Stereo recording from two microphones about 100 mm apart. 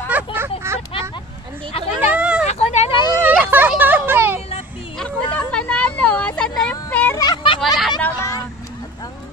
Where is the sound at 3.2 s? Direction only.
20° right (ahead or behind).